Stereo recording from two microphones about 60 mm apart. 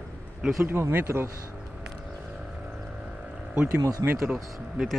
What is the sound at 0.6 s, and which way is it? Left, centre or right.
Speech, right.